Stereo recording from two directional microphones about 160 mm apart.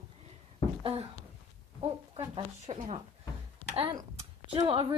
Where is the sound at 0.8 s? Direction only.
35° right (ahead or behind).